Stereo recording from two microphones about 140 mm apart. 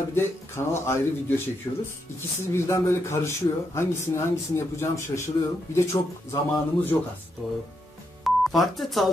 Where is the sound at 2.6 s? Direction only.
20° left (ahead or behind).